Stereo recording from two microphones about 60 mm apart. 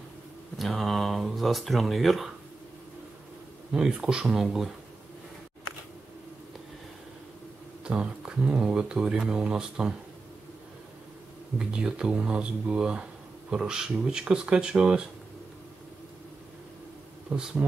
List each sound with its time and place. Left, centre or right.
0.6 s speech: centre
3.7 s speech: centre
7.8 s speech: centre
11.5 s speech: centre
17.3 s speech: right